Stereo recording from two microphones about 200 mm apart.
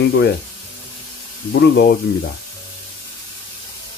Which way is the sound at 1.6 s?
50° left (ahead or behind).